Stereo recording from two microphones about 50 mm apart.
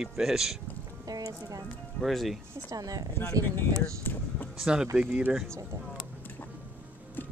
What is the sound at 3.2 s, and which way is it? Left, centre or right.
Speech, left.